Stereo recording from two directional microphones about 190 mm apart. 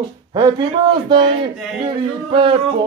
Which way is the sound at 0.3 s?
25° right (ahead or behind).